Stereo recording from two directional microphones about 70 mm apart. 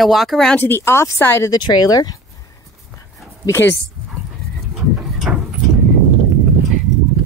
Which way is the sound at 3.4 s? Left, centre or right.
Left.